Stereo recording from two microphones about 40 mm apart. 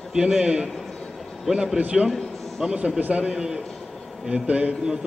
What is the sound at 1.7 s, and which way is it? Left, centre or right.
Speech, right.